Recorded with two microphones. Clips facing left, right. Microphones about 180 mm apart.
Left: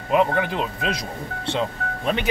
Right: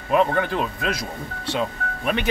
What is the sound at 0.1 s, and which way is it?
Speech, 15° left (ahead or behind).